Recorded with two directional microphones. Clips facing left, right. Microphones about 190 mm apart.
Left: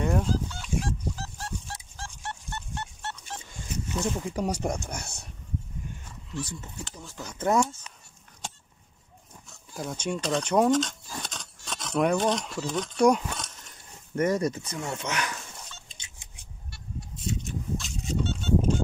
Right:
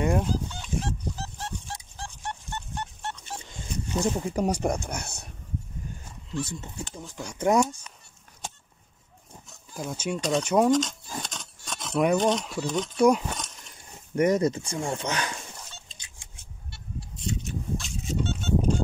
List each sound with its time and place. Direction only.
0.0 s fowl: 15° right (ahead or behind)
2.0 s a sound: 15° right (ahead or behind)
3.9 s speech: 40° right (ahead or behind)
4.3 s speech: 55° right (ahead or behind)
6.3 s speech: 25° right (ahead or behind)
9.8 s speech: 5° right (ahead or behind)
10.7 s scissors: centre (ahead or behind)
12.1 s speech: 15° right (ahead or behind)
14.1 s speech: 20° right (ahead or behind)
15.9 s a sound: 20° left (ahead or behind)
17.3 s a sound: centre (ahead or behind)